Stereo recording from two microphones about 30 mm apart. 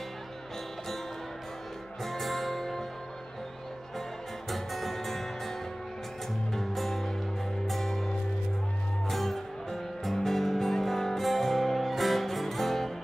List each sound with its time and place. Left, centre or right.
2.0 s music: centre
4.5 s music: centre
6.5 s music: centre
7.8 s music: centre
9.1 s music: centre